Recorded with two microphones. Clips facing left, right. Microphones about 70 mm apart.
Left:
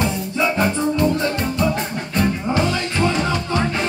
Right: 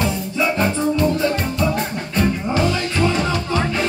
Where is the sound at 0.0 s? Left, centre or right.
Left.